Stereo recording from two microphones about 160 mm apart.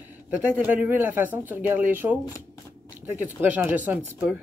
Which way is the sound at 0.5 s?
10° right (ahead or behind).